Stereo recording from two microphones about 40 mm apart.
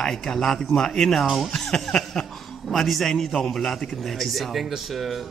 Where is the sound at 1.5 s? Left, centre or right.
Centre.